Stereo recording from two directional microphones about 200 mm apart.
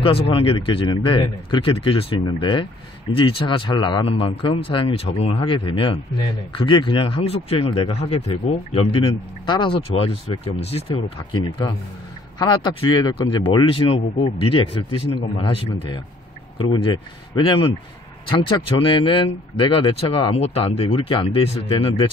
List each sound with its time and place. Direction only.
0.0 s speech: 25° left (ahead or behind)